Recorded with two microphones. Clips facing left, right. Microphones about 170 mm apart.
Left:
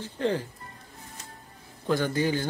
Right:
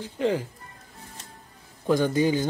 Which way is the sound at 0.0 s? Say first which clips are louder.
Right 2 dB; 10° right (ahead or behind).